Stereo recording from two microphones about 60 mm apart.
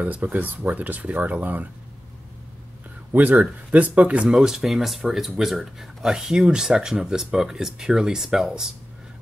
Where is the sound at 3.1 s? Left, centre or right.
Right.